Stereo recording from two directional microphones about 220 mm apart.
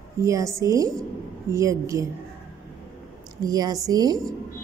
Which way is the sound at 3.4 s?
15° right (ahead or behind).